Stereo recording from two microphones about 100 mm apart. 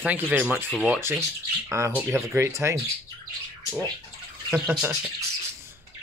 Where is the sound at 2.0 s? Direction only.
20° right (ahead or behind).